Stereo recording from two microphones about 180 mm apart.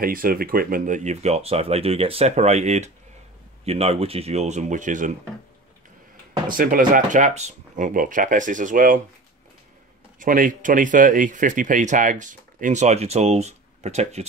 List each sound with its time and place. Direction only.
0.0 s speech: 55° right (ahead or behind)
6.5 s speech: 50° right (ahead or behind)
10.1 s speech: 50° right (ahead or behind)